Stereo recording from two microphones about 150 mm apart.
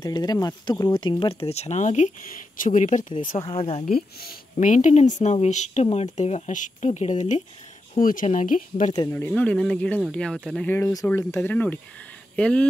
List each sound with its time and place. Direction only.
0.0 s speech: 25° left (ahead or behind); by 3.3 s 60° left (ahead or behind)
3.3 s speech: 35° left (ahead or behind)
3.8 s speech: 90° left
4.6 s speech: 55° left (ahead or behind)
8.0 s speech: 65° left (ahead or behind)
9.1 s speech: 10° left (ahead or behind)
10.8 s speech: 25° left (ahead or behind); by 12.6 s 5° left (ahead or behind)